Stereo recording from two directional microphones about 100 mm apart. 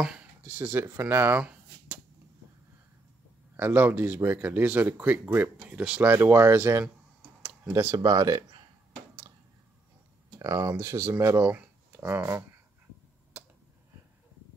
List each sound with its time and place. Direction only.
0.0 s speech: 10° right (ahead or behind)
1.4 s finger snapping: 15° right (ahead or behind)
3.5 s speech: 20° right (ahead or behind)
6.1 s speech: 25° right (ahead or behind)
8.4 s a sound: 50° right (ahead or behind)
10.4 s speech: 30° right (ahead or behind)
13.4 s a sound: 15° right (ahead or behind)